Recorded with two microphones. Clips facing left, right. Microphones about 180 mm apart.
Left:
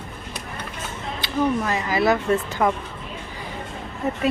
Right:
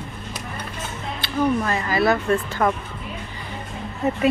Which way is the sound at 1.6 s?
15° left (ahead or behind).